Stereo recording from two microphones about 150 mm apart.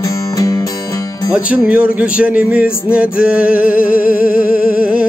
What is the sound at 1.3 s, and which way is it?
Speech, 5° right (ahead or behind).